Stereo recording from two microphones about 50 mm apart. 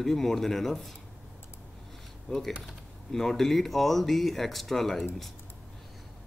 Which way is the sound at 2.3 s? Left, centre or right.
Centre.